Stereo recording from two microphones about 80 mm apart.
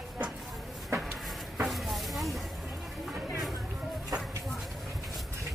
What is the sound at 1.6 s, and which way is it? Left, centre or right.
Hiss, centre.